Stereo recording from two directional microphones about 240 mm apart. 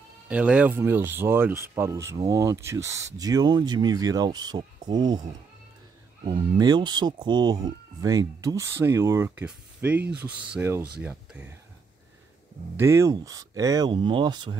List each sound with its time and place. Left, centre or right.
0.3 s speech: centre
6.2 s speech: centre
12.7 s speech: centre